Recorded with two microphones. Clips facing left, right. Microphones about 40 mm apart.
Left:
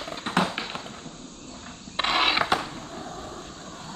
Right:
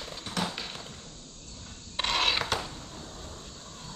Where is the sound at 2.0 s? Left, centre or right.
Centre.